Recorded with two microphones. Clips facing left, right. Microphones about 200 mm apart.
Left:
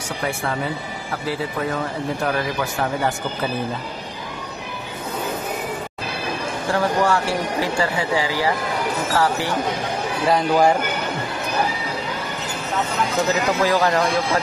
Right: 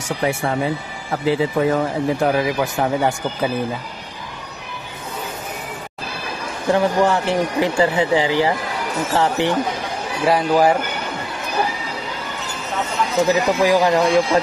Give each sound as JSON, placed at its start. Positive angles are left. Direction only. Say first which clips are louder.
{"t": 0.2, "sound": "speech", "louder": "right 4 dB", "side_deg": -20}
{"t": 6.7, "sound": "speech", "louder": "right 3 dB", "side_deg": -20}
{"t": 10.2, "sound": "speech", "louder": "right 2 dB", "side_deg": -5}
{"t": 13.1, "sound": "speech", "louder": "right 5 dB", "side_deg": -15}